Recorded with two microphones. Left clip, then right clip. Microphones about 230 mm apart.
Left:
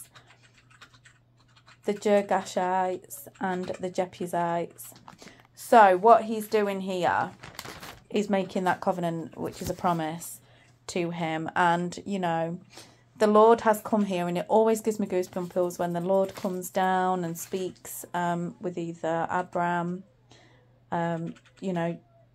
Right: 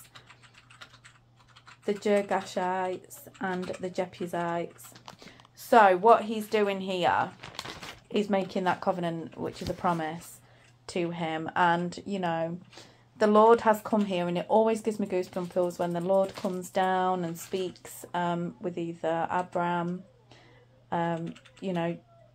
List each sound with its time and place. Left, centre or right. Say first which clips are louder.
1.9 s speech: left 3 dB; left
7.4 s a sound: right 1 dB; centre
8.1 s speech: left 1 dB; left
20.9 s speech: even; left